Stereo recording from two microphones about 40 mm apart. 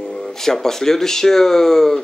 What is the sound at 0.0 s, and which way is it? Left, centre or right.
Speech, centre.